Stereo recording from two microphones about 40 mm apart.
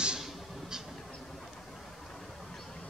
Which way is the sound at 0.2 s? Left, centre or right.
Centre.